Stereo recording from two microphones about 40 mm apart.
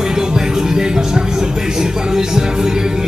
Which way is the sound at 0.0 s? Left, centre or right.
Centre.